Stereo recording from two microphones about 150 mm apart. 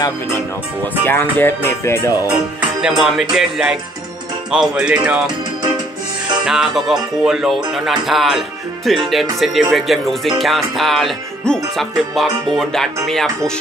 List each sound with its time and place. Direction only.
1.0 s music: 15° left (ahead or behind)
2.8 s speech: 5° right (ahead or behind)
6.4 s speech: 5° right (ahead or behind)